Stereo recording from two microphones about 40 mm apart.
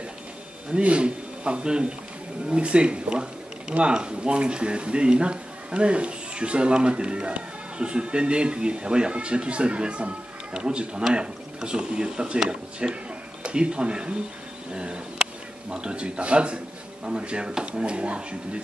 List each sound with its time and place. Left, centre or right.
0.7 s speech: right
14.7 s a sound: right
15.7 s speech: right